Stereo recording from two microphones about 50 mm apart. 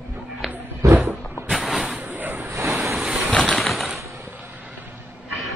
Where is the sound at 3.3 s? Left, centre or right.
Centre.